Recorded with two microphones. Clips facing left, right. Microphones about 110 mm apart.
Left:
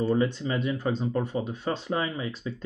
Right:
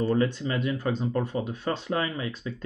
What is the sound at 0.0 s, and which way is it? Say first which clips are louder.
Speech: even; 15° left (ahead or behind).